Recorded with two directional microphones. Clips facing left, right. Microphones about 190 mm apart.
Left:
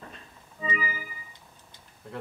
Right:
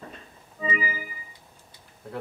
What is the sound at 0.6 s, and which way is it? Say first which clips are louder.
Organ: right 3 dB; 20° right (ahead or behind).